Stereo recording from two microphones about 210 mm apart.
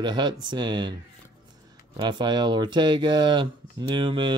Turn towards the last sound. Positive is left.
turn(degrees=-20)  # may be behind; listen again after turning